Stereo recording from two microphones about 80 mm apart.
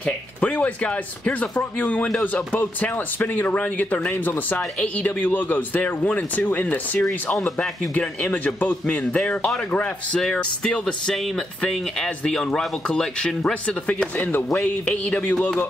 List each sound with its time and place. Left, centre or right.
0.0 s speech: centre
14.5 s speech: centre